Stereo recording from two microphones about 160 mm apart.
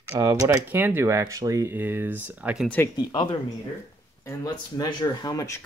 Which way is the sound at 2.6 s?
10° left (ahead or behind).